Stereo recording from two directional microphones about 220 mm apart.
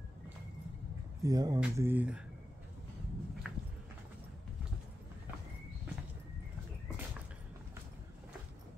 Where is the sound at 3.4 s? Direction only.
5° right (ahead or behind).